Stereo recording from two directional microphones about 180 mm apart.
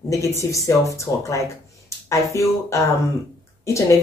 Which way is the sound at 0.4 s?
15° left (ahead or behind).